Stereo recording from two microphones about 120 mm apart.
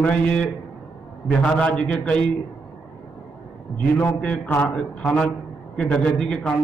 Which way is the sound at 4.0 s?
15° left (ahead or behind).